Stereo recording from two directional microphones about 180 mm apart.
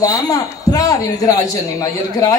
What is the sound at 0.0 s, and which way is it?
Speech, 20° left (ahead or behind).